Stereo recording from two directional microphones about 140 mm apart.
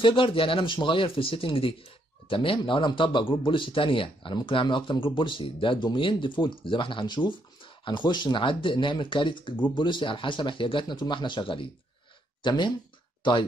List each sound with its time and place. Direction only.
0.0 s speech: 40° left (ahead or behind)